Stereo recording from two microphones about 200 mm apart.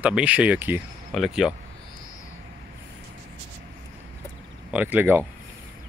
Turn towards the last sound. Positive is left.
turn(degrees=-10)  # may be behind; listen again after turning